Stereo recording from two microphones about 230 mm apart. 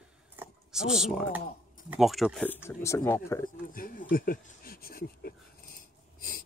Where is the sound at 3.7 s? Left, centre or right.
Left.